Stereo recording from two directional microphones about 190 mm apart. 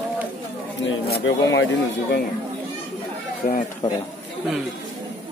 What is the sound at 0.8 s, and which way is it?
Speech, 65° left (ahead or behind).